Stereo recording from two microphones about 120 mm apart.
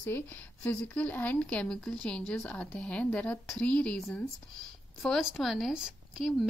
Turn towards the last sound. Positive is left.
turn(degrees=-5)  # may be behind; listen again after turning